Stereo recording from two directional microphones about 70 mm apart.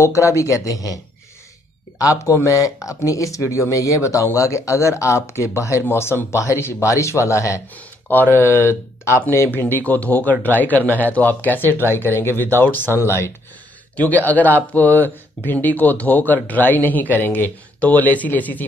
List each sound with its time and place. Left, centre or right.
0.0 s speech: left
7.7 s speech: left
13.9 s speech: left